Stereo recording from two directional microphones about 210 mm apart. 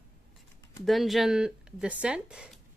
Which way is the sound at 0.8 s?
Centre (ahead or behind).